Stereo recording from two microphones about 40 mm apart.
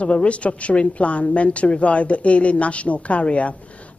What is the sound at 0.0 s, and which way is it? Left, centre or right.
A woman's voice, left.